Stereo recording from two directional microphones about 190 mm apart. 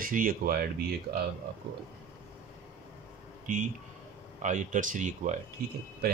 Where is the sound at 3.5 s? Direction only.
45° right (ahead or behind).